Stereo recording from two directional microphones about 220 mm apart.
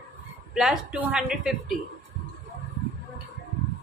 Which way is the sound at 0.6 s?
5° right (ahead or behind).